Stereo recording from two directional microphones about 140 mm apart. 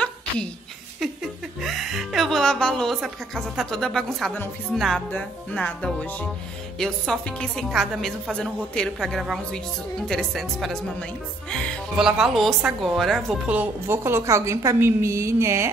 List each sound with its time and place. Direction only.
1.6 s a woman's voice: centre (ahead or behind); by 15.7 s 20° right (ahead or behind)